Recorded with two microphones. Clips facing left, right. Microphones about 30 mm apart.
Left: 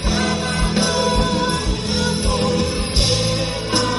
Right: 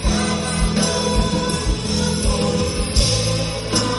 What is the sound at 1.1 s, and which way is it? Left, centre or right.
Music, centre.